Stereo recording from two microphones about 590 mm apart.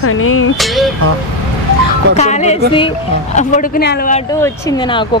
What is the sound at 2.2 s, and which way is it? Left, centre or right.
Speech, centre.